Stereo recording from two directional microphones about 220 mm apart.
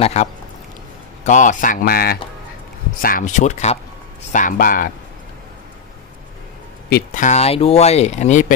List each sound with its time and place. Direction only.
0.0 s speech: 30° left (ahead or behind)
6.9 s speech: 35° left (ahead or behind)